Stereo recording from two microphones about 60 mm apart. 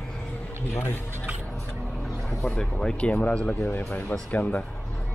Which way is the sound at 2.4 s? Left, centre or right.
Centre.